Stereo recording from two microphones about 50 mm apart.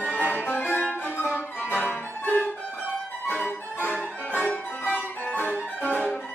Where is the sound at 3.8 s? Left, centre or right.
Left.